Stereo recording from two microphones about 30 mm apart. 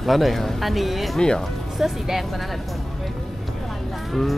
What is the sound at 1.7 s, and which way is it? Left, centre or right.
Speech, centre.